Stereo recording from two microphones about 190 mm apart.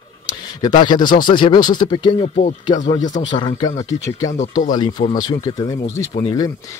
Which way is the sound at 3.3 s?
25° left (ahead or behind).